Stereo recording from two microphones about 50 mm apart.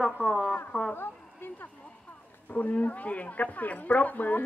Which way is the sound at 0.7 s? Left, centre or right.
Centre.